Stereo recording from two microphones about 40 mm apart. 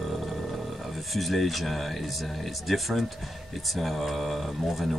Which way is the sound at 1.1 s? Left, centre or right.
Centre.